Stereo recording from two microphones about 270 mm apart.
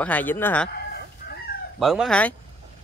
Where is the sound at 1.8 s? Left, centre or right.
Centre.